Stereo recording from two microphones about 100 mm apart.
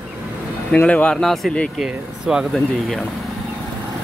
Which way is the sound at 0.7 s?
15° left (ahead or behind).